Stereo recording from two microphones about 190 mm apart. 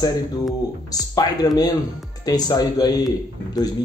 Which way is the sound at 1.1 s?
20° left (ahead or behind).